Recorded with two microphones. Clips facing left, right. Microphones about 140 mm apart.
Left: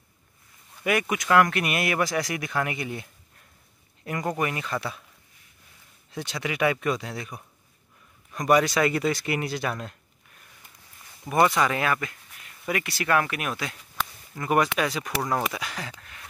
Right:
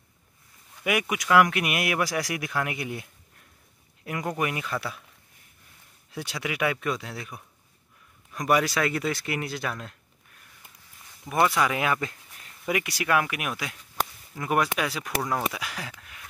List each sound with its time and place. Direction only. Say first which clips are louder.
0.8 s speech: left 1 dB; 10° right (ahead or behind)
6.1 s speech: left 2 dB; 5° right (ahead or behind)
11.2 s speech: left 2 dB; centre (ahead or behind)
11.9 s speech: even; 30° right (ahead or behind)
12.6 s speech: even; 15° right (ahead or behind)